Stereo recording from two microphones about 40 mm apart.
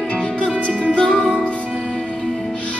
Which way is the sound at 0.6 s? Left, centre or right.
Left.